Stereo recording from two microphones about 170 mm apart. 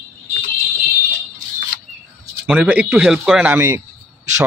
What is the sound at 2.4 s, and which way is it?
Speech, 10° right (ahead or behind).